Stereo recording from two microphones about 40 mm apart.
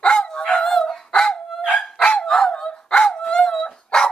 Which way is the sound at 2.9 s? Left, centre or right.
Centre.